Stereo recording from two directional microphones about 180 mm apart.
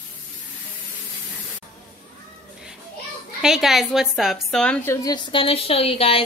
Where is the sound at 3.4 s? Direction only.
Centre (ahead or behind).